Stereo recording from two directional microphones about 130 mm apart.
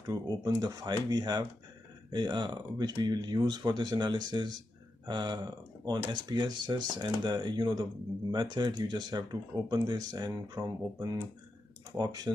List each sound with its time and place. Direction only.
0.0 s speech: 30° right (ahead or behind)